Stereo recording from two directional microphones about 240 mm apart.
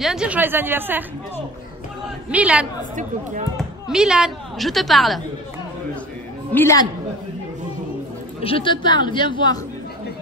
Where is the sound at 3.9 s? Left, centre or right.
Centre.